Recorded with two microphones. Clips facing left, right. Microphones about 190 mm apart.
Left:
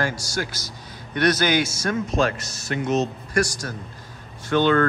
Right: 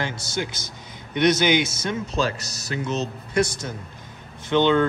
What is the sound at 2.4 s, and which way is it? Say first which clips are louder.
Speech: even; 40° right (ahead or behind).